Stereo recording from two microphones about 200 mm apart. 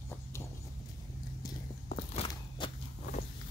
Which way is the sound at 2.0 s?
25° left (ahead or behind).